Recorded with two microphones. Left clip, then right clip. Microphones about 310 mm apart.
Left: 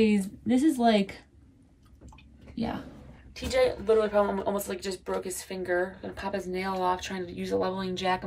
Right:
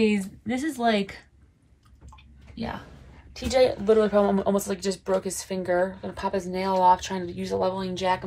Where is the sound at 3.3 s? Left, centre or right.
Centre.